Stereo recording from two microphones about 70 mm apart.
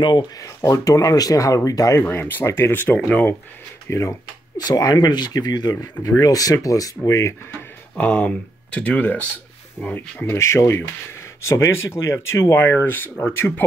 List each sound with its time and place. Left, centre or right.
0.6 s speech: left
2.0 s speech: left
2.4 s speech: left
2.7 s speech: left
3.0 s speech: centre
3.9 s speech: left
4.6 s speech: left
5.8 s speech: left
8.0 s speech: centre
10.3 s speech: left